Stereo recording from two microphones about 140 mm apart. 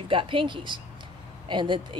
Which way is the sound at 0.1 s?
35° right (ahead or behind).